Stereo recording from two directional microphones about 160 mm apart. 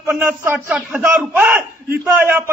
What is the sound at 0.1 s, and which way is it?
A man's voice, 5° right (ahead or behind).